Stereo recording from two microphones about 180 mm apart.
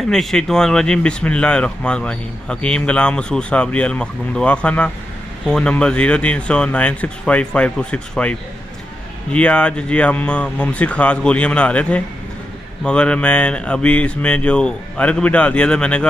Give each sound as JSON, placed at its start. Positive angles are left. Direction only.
{"t": 0.1, "sound": "speech", "side_deg": 5}